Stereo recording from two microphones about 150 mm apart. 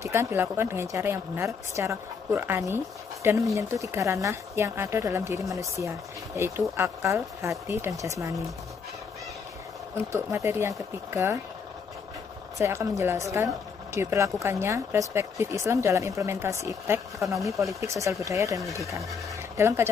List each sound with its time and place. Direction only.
0.0 s speech: 15° right (ahead or behind)
10.1 s speech: 15° right (ahead or behind)
12.5 s speech: 20° right (ahead or behind)